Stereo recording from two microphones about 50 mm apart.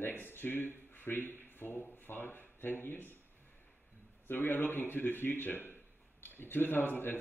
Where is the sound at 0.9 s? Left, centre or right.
Left.